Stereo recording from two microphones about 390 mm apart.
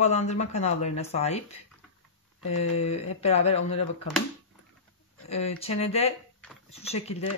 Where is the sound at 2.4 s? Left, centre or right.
Left.